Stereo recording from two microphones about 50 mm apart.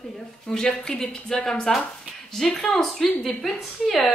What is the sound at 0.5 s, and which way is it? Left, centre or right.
A woman's voice, centre.